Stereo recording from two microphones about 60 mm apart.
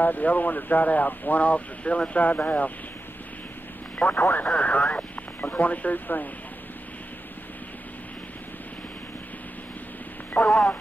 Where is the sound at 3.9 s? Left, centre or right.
Left.